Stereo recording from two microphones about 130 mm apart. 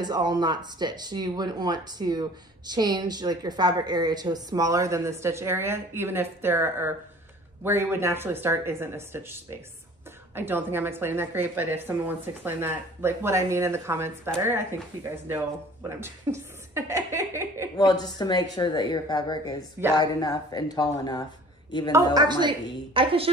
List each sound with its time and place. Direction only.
0.0 s speech: 35° right (ahead or behind)
17.7 s speech: 30° left (ahead or behind)
22.1 s speech: 35° right (ahead or behind)